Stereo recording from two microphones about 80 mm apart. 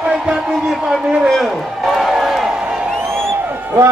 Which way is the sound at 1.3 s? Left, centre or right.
Centre.